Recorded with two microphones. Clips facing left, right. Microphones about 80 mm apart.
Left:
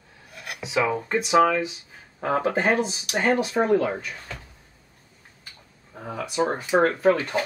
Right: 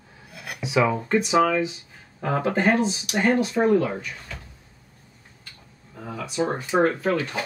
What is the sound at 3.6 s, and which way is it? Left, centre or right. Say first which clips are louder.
Speech: right 2 dB; left.